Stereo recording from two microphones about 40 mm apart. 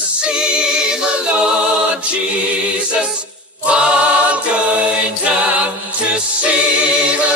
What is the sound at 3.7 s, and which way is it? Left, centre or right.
Choir, right.